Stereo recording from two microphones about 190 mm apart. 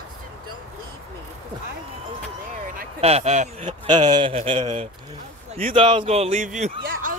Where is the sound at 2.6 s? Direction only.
50° right (ahead or behind).